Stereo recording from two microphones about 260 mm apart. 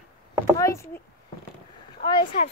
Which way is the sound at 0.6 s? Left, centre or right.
Centre.